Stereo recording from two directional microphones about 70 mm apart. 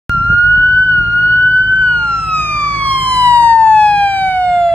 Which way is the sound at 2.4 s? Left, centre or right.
Left.